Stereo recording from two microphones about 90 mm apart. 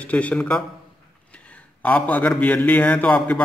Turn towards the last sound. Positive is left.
turn(degrees=15)  # may be behind; listen again after turning